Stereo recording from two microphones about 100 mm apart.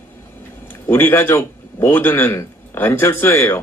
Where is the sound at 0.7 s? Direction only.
20° left (ahead or behind).